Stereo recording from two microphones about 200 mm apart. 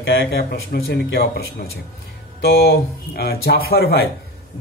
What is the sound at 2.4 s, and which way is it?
Speech, 50° left (ahead or behind).